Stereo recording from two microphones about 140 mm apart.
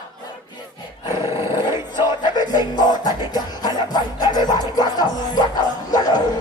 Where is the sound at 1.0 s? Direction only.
20° right (ahead or behind).